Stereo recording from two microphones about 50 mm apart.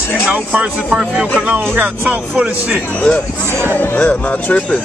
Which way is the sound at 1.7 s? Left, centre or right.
Right.